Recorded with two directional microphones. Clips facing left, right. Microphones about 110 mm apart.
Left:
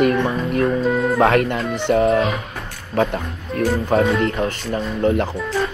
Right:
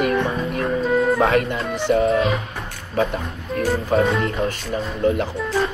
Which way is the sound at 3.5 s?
Centre (ahead or behind).